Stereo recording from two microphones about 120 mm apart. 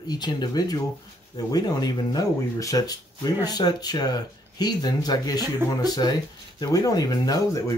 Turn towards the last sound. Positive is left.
turn(degrees=30)  # may be behind; listen again after turning